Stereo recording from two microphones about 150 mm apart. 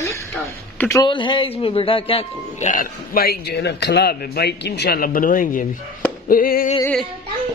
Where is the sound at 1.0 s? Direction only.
30° left (ahead or behind).